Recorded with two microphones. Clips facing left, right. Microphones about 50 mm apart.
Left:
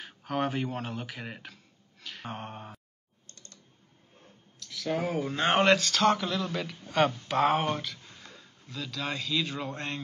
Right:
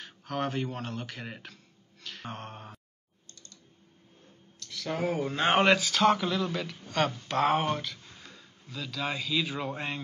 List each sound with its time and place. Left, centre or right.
0.0 s speech: centre
3.3 s a sound: left
4.6 s speech: centre